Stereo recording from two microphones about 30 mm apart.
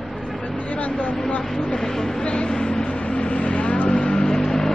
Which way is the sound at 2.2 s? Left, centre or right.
Left.